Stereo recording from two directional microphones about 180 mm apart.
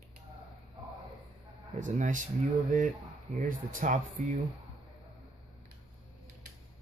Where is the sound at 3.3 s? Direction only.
45° right (ahead or behind).